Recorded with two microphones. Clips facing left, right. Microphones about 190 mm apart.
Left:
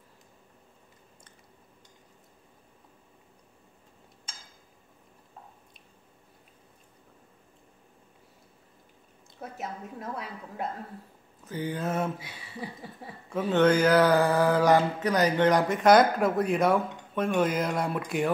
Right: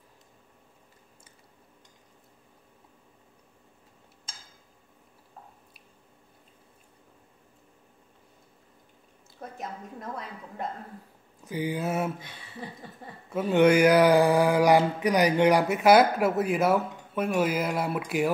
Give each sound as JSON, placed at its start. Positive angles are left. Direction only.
{"t": 9.4, "sound": "a woman's voice", "side_deg": 5}
{"t": 11.4, "sound": "mantra", "side_deg": -10}
{"t": 12.2, "sound": "a sound", "side_deg": 10}
{"t": 13.3, "sound": "mantra", "side_deg": -10}